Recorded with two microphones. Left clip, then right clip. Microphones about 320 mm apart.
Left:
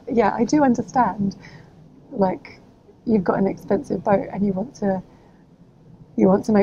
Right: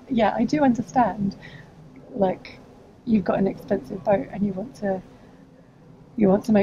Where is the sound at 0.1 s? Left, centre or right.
Left.